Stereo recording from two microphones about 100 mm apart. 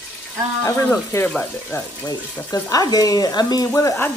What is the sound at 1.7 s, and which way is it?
Speech, 30° left (ahead or behind).